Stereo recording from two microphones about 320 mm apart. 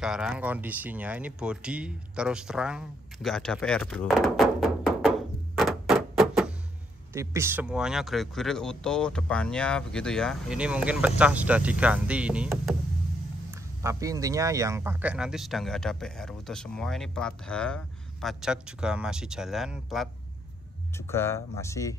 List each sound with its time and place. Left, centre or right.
0.0 s speech: centre
5.6 s a sound: centre
7.2 s speech: centre
21.1 s speech: centre